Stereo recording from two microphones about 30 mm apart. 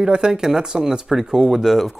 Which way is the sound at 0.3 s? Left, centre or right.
Centre.